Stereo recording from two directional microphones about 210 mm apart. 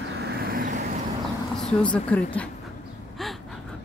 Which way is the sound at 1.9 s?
5° left (ahead or behind).